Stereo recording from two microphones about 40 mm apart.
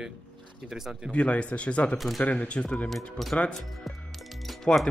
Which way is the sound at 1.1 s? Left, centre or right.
Left.